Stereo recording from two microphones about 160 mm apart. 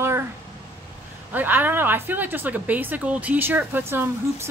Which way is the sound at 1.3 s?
10° right (ahead or behind).